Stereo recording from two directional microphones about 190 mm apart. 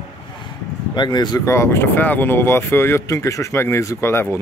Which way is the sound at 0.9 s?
20° left (ahead or behind).